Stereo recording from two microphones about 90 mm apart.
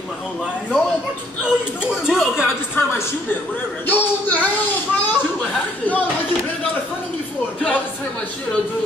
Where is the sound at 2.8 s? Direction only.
25° left (ahead or behind).